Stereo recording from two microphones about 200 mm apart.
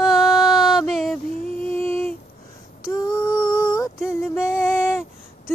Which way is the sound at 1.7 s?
10° left (ahead or behind).